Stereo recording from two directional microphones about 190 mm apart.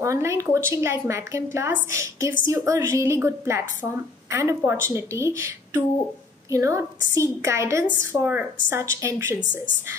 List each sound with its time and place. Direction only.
0.0 s a woman's voice: 15° right (ahead or behind)
6.5 s a woman's voice: 15° right (ahead or behind)